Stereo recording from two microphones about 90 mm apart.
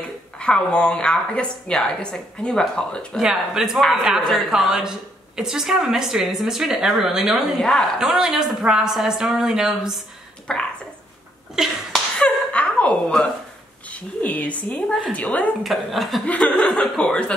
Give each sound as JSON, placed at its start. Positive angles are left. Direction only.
{"t": 0.4, "sound": "a woman's voice", "side_deg": 10}
{"t": 3.2, "sound": "a woman's voice", "side_deg": -5}
{"t": 10.5, "sound": "a woman's voice", "side_deg": 10}
{"t": 11.5, "sound": "a sound", "side_deg": -5}
{"t": 12.2, "sound": "chuckle", "side_deg": 15}
{"t": 14.2, "sound": "a woman's voice", "side_deg": 15}
{"t": 15.6, "sound": "a woman's voice", "side_deg": 0}
{"t": 16.3, "sound": "a woman's voice", "side_deg": 15}